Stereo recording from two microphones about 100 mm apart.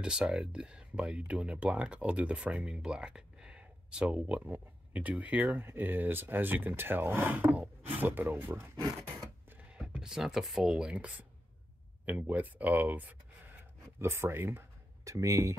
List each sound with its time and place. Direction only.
0.0 s speech: 10° right (ahead or behind)
9.7 s speech: 10° right (ahead or behind); by 15.5 s 30° right (ahead or behind)